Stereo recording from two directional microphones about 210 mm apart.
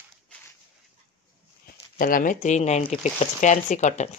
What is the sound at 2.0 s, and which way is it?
Speech, 40° left (ahead or behind).